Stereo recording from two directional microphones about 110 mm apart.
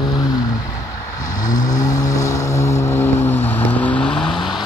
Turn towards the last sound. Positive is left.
turn(degrees=10)  # may be behind; listen again after turning